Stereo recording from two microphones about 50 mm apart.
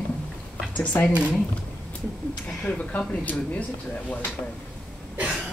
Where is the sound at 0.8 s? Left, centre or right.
Left.